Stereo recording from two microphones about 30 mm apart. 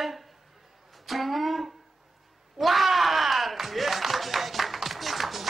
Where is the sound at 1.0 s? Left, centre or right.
Centre.